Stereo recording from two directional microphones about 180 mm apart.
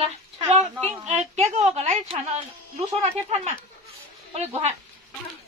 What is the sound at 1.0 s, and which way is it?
A woman's voice, 40° right (ahead or behind).